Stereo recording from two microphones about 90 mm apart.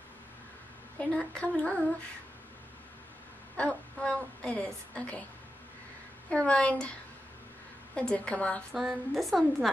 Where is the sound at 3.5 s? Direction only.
10° left (ahead or behind).